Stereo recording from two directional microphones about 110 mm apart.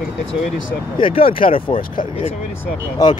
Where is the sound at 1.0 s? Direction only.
55° left (ahead or behind).